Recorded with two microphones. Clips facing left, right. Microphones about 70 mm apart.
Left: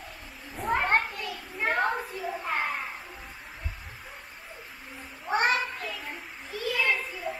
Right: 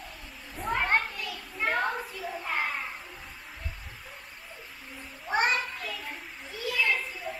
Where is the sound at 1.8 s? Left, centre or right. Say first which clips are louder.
Left 3 dB; centre.